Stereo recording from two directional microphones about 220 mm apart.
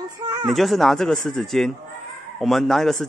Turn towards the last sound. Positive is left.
turn(degrees=0)  # may be behind; listen again after turning